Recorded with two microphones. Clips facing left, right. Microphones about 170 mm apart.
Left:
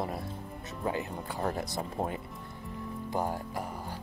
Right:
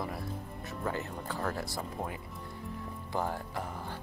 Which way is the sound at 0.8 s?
15° left (ahead or behind).